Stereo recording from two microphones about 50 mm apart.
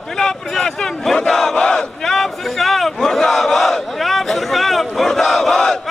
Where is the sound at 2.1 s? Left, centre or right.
Centre.